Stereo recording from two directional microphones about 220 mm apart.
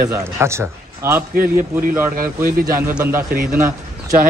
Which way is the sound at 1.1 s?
40° right (ahead or behind).